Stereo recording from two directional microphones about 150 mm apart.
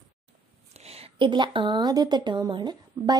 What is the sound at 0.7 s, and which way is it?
A woman's voice, 40° right (ahead or behind).